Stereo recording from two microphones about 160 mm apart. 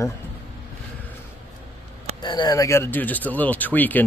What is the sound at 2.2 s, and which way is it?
Speech, 25° left (ahead or behind).